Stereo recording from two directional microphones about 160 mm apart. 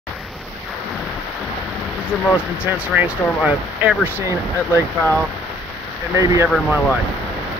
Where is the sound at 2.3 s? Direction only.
10° right (ahead or behind).